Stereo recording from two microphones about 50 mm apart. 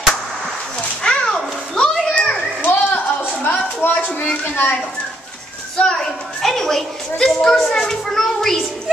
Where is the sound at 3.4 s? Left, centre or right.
Left.